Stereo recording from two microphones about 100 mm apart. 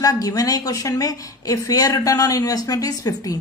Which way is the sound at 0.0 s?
40° left (ahead or behind).